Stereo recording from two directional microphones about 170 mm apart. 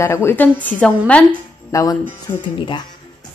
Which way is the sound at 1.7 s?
20° left (ahead or behind).